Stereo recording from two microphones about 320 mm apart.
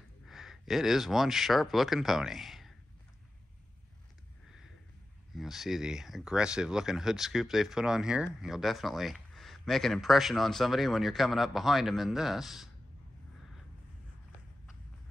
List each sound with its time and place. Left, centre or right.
0.3 s speech: centre
5.3 s speech: centre